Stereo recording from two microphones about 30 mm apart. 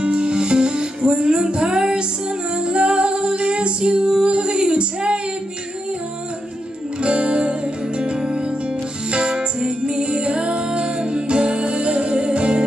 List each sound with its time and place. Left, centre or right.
0.0 s music: right
7.0 s music: right